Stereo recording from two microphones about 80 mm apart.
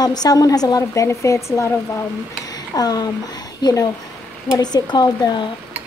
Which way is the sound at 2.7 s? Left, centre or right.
Left.